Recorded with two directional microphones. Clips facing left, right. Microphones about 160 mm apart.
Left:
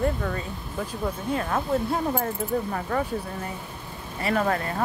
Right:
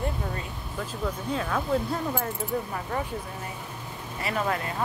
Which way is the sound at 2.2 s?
55° left (ahead or behind).